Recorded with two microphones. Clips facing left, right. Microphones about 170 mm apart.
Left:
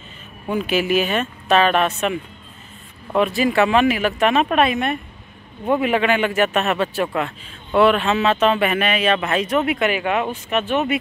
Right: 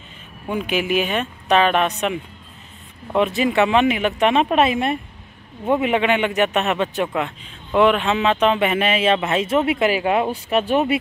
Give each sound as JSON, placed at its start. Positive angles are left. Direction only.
{"t": 0.5, "sound": "speech", "side_deg": -15}
{"t": 3.2, "sound": "speech", "side_deg": -20}